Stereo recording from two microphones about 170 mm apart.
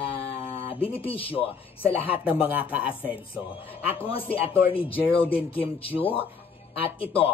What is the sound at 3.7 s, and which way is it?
Speech, 35° left (ahead or behind).